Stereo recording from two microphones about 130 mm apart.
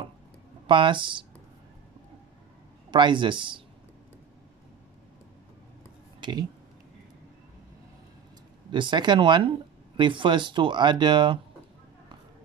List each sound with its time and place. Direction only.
0.7 s speech: 40° right (ahead or behind)
2.9 s speech: 40° right (ahead or behind)
8.7 s speech: 35° right (ahead or behind)